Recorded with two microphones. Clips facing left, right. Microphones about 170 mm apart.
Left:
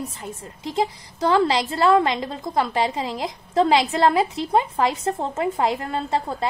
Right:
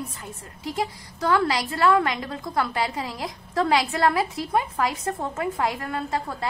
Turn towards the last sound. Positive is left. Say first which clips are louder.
# left 4 dB
turn(degrees=25)  # may be behind; listen again after turning